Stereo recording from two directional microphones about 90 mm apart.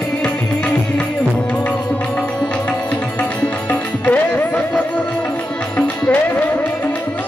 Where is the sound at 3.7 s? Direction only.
15° left (ahead or behind).